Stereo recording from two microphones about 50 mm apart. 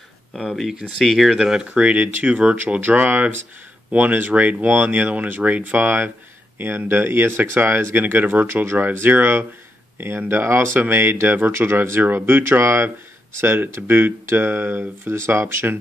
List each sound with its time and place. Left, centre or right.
0.9 s speech: centre
1.7 s speech: right
8.0 s speech: right
12.0 s speech: right